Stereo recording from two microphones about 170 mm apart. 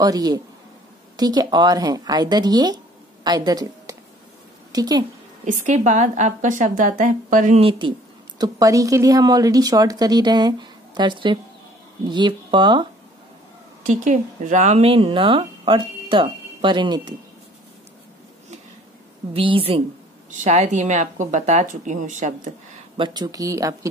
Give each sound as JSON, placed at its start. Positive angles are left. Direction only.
{"t": 0.0, "sound": "a woman's voice", "side_deg": -20}
{"t": 5.4, "sound": "a woman's voice", "side_deg": -45}
{"t": 8.4, "sound": "a woman's voice", "side_deg": -20}
{"t": 13.8, "sound": "speech", "side_deg": -45}
{"t": 19.3, "sound": "a woman's voice", "side_deg": -35}
{"t": 20.2, "sound": "a woman's voice", "side_deg": -45}
{"t": 22.9, "sound": "a woman's voice", "side_deg": -25}